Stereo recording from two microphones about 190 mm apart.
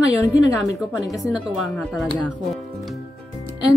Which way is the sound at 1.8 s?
Centre (ahead or behind).